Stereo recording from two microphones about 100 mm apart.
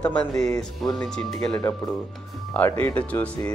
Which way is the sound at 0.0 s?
10° left (ahead or behind).